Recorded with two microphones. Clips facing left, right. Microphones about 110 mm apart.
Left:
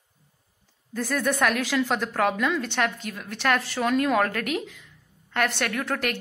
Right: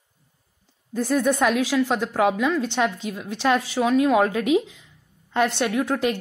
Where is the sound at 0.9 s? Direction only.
15° right (ahead or behind).